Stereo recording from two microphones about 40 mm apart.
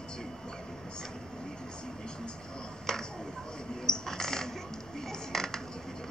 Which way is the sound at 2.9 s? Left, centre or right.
Centre.